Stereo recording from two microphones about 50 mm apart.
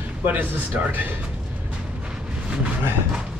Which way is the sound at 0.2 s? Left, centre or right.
Right.